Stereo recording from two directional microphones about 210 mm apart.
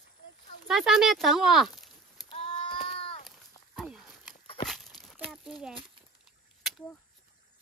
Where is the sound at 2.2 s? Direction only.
25° left (ahead or behind).